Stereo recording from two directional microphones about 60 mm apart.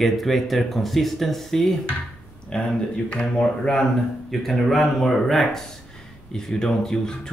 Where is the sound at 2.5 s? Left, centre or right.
Centre.